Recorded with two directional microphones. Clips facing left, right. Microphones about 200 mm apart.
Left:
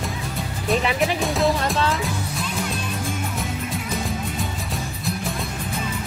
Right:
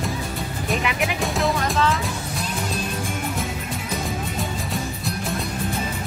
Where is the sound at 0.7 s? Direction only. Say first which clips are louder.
Left 4 dB; 30° left (ahead or behind).